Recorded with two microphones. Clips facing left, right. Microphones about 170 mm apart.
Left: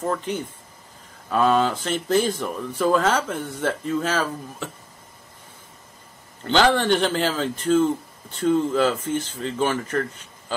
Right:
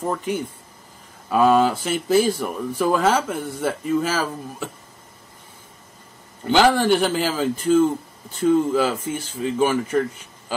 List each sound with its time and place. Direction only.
0.0 s speech: 10° right (ahead or behind)
6.4 s speech: 10° right (ahead or behind)